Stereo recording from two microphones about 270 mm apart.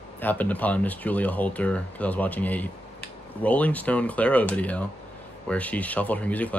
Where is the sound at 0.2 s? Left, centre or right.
Centre.